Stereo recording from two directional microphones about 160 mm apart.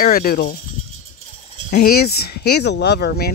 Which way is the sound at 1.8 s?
80° left.